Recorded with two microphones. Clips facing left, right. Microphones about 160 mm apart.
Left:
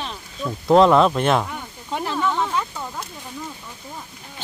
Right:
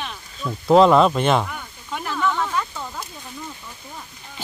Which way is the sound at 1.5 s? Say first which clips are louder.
Left 2 dB; 25° left (ahead or behind).